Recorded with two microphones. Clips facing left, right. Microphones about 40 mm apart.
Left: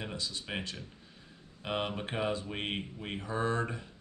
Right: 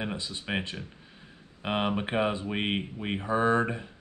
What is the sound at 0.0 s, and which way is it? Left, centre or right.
Speech, right.